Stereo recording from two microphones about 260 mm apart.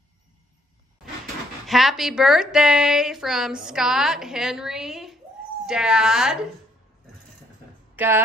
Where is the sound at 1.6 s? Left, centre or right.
Centre.